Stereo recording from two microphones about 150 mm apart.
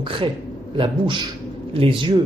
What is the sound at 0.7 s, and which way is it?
Speech, 35° right (ahead or behind).